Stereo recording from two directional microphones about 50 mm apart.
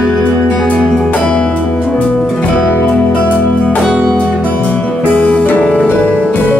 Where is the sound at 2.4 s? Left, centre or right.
Left.